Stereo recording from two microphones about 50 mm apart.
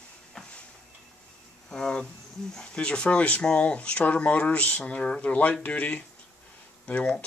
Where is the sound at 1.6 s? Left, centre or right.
Centre.